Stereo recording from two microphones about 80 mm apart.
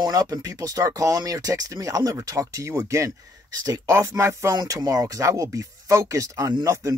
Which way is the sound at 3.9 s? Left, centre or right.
Right.